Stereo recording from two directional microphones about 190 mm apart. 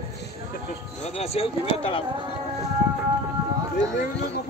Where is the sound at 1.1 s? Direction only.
30° left (ahead or behind).